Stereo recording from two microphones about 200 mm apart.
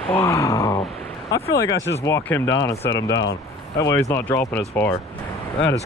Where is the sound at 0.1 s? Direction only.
15° left (ahead or behind).